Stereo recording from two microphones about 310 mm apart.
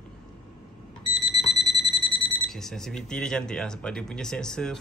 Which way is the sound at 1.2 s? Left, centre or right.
Centre.